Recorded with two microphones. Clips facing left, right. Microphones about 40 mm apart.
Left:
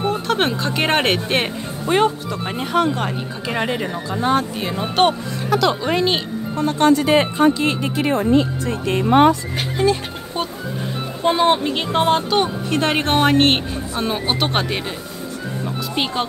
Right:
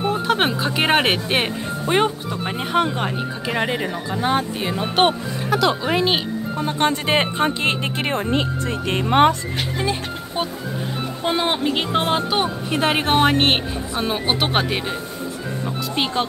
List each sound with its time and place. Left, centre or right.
0.0 s speech: centre
4.2 s speech: centre
6.9 s speech: right
9.8 s speech: centre